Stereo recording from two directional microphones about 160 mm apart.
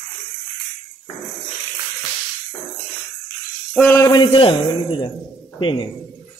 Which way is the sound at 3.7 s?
5° left (ahead or behind).